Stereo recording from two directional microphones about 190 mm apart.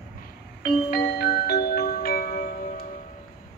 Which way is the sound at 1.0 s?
55° left (ahead or behind).